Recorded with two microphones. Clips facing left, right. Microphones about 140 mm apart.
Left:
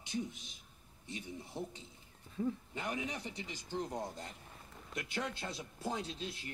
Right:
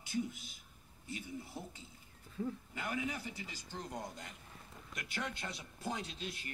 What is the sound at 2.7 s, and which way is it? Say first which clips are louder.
Speech: even; 25° left (ahead or behind).